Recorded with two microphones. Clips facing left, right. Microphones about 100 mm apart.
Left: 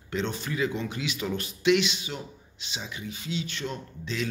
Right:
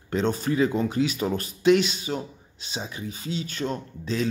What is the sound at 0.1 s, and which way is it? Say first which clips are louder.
Speech: right 6 dB; 40° right (ahead or behind).